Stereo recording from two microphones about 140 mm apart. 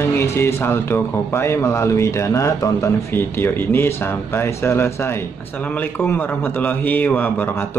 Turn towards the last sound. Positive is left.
turn(degrees=15)  # may be behind; listen again after turning